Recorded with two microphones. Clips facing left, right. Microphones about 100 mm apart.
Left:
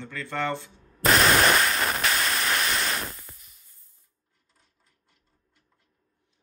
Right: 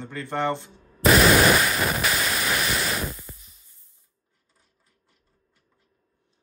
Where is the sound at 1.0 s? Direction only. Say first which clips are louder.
Right 3 dB; 5° right (ahead or behind).